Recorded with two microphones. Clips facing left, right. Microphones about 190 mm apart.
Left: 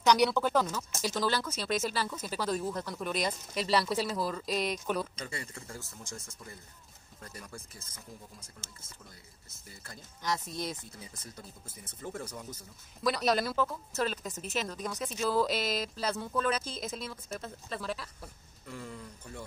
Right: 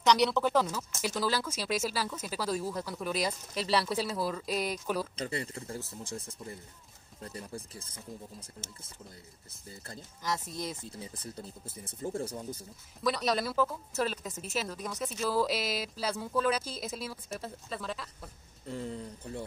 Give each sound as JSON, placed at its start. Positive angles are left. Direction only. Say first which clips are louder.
{"t": 0.0, "sound": "speech", "louder": "even", "side_deg": 0}
{"t": 5.1, "sound": "speech", "louder": "right 6 dB", "side_deg": -35}
{"t": 10.2, "sound": "speech", "louder": "left 1 dB", "side_deg": 0}
{"t": 10.8, "sound": "speech", "louder": "right 5 dB", "side_deg": -30}
{"t": 13.0, "sound": "speech", "louder": "left 1 dB", "side_deg": 0}
{"t": 18.7, "sound": "speech", "louder": "right 5 dB", "side_deg": -35}